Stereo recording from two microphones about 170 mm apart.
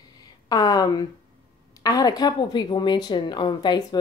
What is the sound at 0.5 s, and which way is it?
Speech, 20° left (ahead or behind).